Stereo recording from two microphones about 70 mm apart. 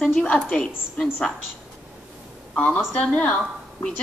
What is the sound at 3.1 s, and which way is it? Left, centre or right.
Speech, centre.